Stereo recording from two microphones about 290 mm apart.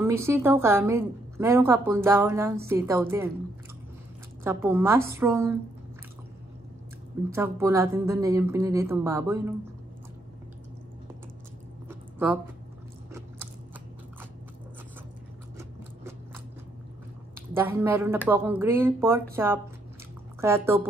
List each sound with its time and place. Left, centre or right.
0.0 s a woman's voice: centre
4.4 s a woman's voice: centre
7.2 s a woman's voice: centre
11.9 s a sound: centre
15.5 s a sound: centre
17.6 s a woman's voice: centre